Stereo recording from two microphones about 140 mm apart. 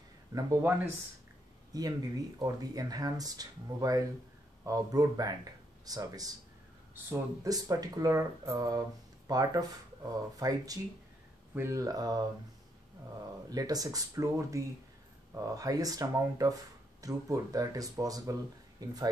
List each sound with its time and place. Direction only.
0.3 s speech: 25° right (ahead or behind)
7.4 s speech: 25° right (ahead or behind)
13.5 s speech: 25° right (ahead or behind)